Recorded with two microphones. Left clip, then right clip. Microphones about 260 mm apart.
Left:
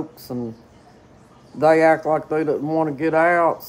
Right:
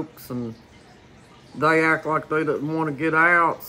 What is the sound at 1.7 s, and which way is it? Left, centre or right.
Speech, centre.